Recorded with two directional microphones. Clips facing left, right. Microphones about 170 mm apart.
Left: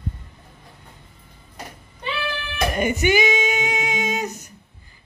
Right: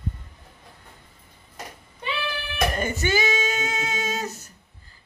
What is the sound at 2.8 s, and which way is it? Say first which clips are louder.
Female singing: left 9 dB; 15° left (ahead or behind).